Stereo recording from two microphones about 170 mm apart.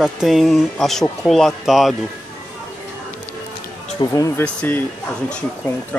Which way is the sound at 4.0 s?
20° left (ahead or behind).